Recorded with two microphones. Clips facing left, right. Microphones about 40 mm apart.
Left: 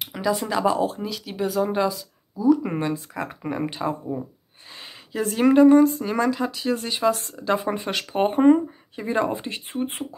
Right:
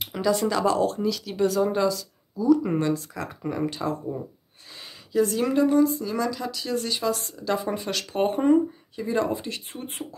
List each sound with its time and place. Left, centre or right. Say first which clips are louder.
0.0 s speech: right 1 dB; centre
4.7 s a sound: right 6 dB; left
5.2 s speech: left 7 dB; left